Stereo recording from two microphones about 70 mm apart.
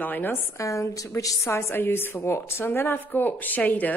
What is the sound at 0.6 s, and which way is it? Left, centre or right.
A woman's voice, left.